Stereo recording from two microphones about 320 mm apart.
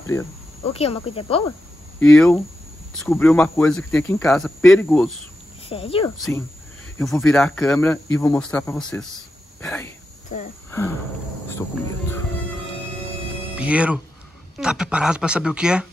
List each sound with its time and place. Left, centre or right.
0.7 s speech: centre
2.0 s speech: centre
5.7 s speech: centre
6.1 s speech: centre
13.6 s speech: centre